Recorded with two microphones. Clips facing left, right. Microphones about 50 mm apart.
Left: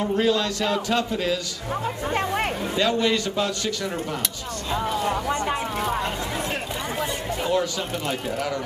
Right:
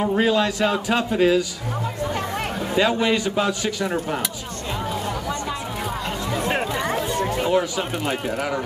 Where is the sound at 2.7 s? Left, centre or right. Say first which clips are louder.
Right 3 dB; centre.